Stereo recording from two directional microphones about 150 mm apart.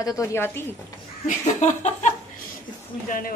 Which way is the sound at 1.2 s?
55° left (ahead or behind).